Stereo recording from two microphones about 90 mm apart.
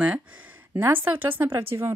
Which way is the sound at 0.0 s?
15° right (ahead or behind).